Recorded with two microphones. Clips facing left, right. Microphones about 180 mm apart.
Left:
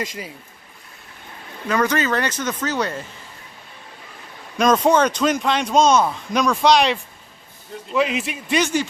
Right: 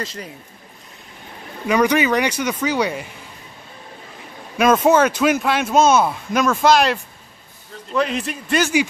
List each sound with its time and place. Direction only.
0.0 s speech: 15° left (ahead or behind)
1.7 s speech: 15° right (ahead or behind)
4.6 s a man's voice: 5° right (ahead or behind)